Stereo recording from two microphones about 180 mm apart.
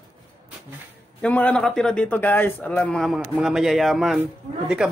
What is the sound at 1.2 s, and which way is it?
A man's voice, 10° left (ahead or behind).